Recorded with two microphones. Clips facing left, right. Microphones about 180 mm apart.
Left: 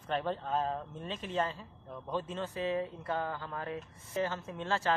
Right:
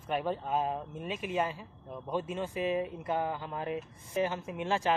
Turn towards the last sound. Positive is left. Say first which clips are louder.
# right 2 dB
turn(degrees=-15)  # may be behind; listen again after turning